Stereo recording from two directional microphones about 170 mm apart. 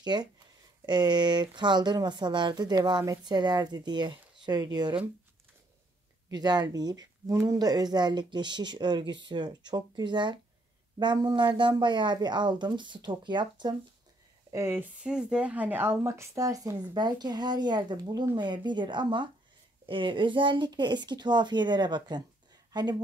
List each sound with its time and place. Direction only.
0.0 s speech: 25° right (ahead or behind)
6.3 s speech: 25° right (ahead or behind)
14.5 s speech: 15° right (ahead or behind)